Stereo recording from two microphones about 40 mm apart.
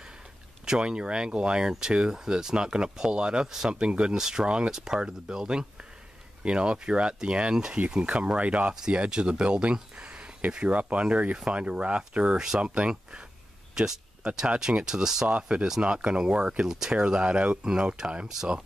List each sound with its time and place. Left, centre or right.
0.7 s speech: right
8.9 s speech: right
13.7 s speech: centre
15.2 s speech: right
16.6 s speech: centre
16.9 s speech: right